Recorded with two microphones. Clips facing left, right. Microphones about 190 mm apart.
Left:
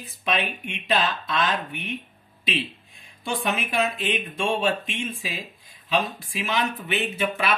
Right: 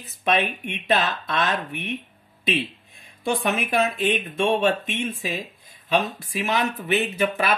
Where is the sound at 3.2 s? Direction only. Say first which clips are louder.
Right 3 dB; 45° right (ahead or behind).